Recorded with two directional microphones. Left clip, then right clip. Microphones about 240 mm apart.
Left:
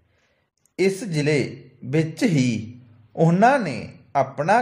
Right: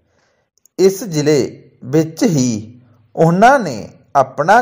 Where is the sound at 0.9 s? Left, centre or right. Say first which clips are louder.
Right 8 dB; right.